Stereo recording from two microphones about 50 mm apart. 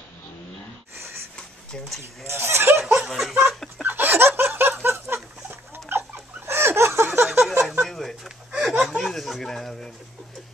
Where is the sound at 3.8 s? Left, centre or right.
Right.